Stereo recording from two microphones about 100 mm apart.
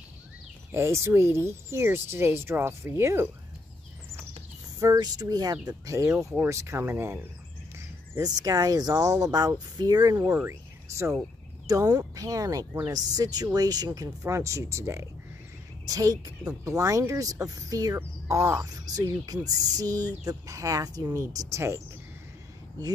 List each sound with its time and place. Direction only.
0.7 s speech: 25° right (ahead or behind)
4.7 s speech: 35° right (ahead or behind)
6.1 s speech: 20° right (ahead or behind)
8.2 s speech: 40° right (ahead or behind)
10.3 s speech: 25° right (ahead or behind)
11.6 s speech: 40° right (ahead or behind)